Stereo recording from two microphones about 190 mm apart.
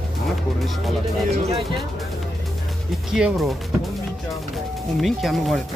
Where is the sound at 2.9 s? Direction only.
Centre (ahead or behind).